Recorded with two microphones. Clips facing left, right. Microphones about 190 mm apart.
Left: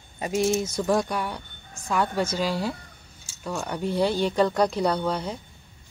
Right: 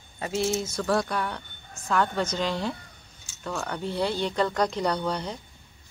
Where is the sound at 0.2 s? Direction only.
15° left (ahead or behind).